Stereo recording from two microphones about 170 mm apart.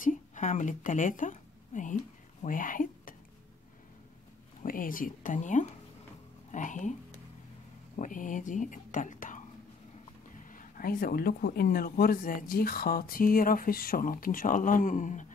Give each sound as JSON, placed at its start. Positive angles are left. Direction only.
{"t": 0.0, "sound": "a sound", "side_deg": 50}
{"t": 4.6, "sound": "a woman's voice", "side_deg": 55}
{"t": 7.9, "sound": "speech", "side_deg": 50}
{"t": 10.5, "sound": "speech", "side_deg": 55}